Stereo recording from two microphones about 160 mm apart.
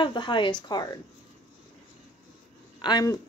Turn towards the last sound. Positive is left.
turn(degrees=25)  # may be behind; listen again after turning